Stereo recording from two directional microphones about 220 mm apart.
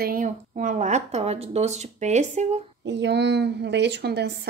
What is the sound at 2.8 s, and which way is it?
A woman's voice, 50° right (ahead or behind).